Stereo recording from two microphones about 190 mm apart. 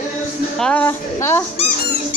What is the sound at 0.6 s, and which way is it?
Speech, 5° left (ahead or behind).